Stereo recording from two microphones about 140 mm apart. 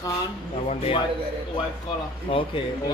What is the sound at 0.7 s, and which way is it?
Speech, 45° left (ahead or behind).